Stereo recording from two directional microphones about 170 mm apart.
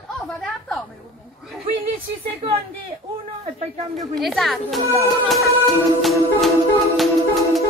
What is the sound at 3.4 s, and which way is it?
Speech, 35° right (ahead or behind).